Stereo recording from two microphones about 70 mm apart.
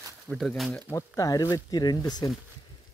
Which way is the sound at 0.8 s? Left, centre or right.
Left.